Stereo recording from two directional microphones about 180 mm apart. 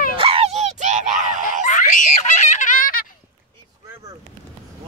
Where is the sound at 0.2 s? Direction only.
35° right (ahead or behind).